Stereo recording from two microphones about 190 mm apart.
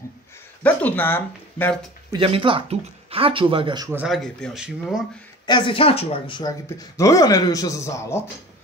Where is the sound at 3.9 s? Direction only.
5° right (ahead or behind).